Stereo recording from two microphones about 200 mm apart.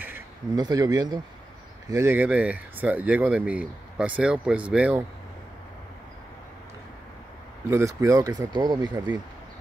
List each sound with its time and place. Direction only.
0.6 s speech: 20° right (ahead or behind)
7.7 s speech: 15° right (ahead or behind)